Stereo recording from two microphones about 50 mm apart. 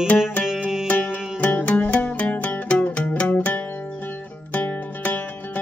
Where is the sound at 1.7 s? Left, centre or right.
Left.